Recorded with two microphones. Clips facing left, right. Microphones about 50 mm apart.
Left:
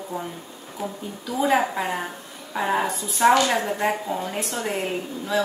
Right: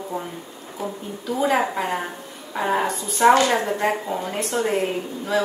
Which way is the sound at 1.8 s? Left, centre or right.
Centre.